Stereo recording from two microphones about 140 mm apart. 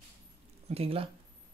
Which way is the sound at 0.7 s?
45° right (ahead or behind).